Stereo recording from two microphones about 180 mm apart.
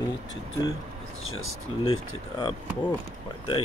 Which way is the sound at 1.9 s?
25° left (ahead or behind).